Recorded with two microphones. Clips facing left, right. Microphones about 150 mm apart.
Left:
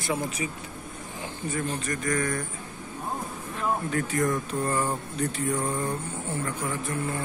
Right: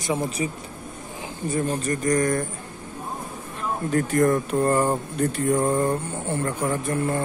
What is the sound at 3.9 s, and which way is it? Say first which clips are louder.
Speech: right 11 dB; 50° right (ahead or behind).